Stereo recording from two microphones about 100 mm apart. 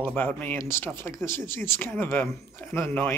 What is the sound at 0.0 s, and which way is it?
Speech, 20° left (ahead or behind).